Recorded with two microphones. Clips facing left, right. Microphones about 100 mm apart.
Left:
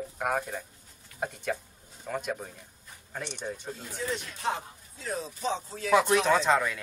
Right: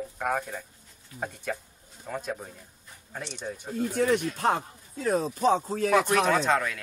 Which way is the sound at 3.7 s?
55° right (ahead or behind).